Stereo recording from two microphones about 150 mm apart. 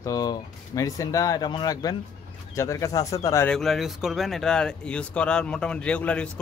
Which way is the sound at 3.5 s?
Centre (ahead or behind).